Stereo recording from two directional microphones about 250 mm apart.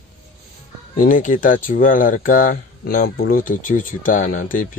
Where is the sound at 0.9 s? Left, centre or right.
Left.